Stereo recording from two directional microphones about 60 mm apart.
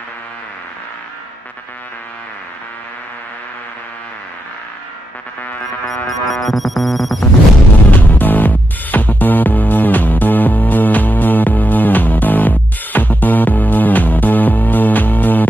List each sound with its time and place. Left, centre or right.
6.0 s music: centre
7.9 s music: left